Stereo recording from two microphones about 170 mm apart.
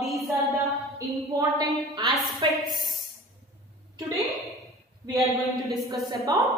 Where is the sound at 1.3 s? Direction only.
20° right (ahead or behind).